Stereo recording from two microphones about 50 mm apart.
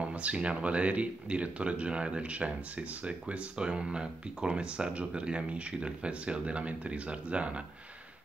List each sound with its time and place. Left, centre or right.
0.0 s speech: right